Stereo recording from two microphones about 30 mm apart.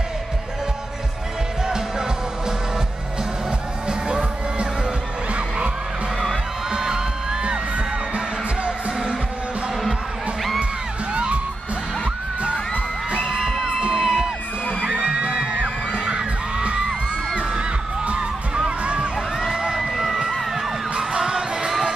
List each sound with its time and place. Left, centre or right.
4.1 s music: right
6.7 s music: right
13.4 s music: centre
13.7 s music: right
13.9 s music: centre
14.8 s music: right
17.4 s crowd: right
19.5 s music: right
21.1 s music: right